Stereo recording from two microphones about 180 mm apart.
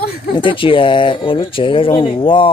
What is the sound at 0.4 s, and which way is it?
Speech, 30° left (ahead or behind).